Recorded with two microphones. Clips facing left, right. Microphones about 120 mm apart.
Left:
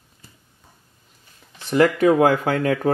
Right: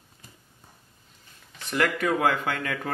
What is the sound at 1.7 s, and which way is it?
Speech, 35° left (ahead or behind).